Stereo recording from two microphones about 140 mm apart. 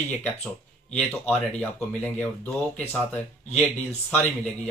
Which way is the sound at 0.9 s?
5° left (ahead or behind).